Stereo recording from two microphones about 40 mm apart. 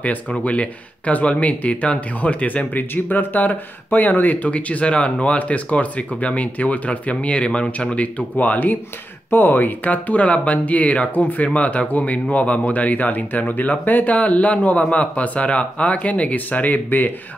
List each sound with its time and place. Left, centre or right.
0.4 s speech: left
2.9 s speech: left
8.4 s speech: left
9.3 s speech: left